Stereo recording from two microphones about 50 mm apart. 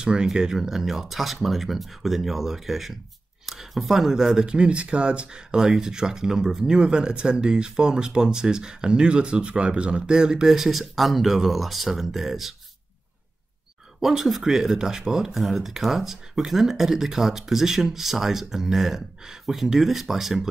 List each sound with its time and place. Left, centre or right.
0.0 s speech: centre
13.9 s speech: centre